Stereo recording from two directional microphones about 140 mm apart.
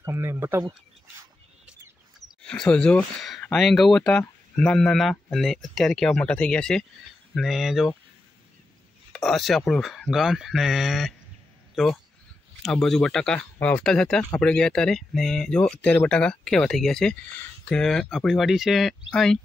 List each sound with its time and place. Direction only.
0.0 s speech: 20° right (ahead or behind)
1.7 s speech: 5° left (ahead or behind)
9.1 s speech: centre (ahead or behind)